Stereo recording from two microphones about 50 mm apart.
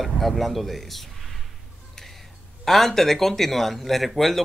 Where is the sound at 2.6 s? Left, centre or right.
Centre.